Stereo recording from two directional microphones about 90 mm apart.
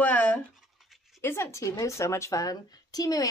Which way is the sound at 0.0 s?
20° left (ahead or behind).